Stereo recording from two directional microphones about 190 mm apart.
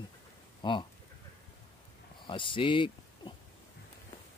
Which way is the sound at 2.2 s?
25° left (ahead or behind).